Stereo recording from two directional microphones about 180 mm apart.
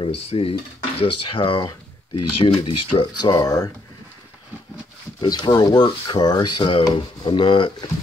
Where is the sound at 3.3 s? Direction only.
20° left (ahead or behind).